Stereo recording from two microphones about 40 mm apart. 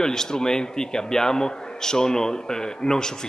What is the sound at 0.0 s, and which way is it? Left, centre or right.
A man's voice, centre.